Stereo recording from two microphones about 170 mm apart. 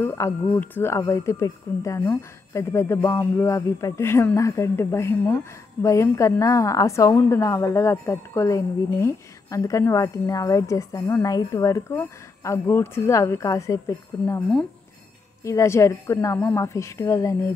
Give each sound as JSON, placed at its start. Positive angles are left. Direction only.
{"t": 0.0, "sound": "speech", "side_deg": 15}
{"t": 15.4, "sound": "speech", "side_deg": 15}